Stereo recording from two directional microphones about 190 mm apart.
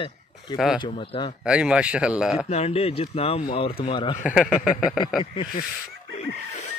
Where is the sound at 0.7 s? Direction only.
25° left (ahead or behind).